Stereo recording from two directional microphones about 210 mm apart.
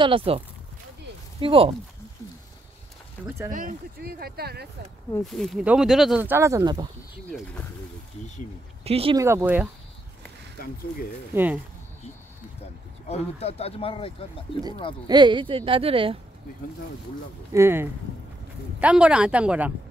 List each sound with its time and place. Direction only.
0.0 s speech: 25° right (ahead or behind)
1.4 s speech: 25° right (ahead or behind)
3.3 s speech: 10° right (ahead or behind)
3.5 s speech: 40° right (ahead or behind)
5.2 s speech: centre (ahead or behind); by 6.9 s 20° right (ahead or behind)
8.8 s speech: 25° right (ahead or behind)
9.2 s speech: 10° right (ahead or behind)
13.1 s speech: 30° left (ahead or behind)
15.0 s speech: 20° right (ahead or behind)
17.5 s speech: 10° right (ahead or behind)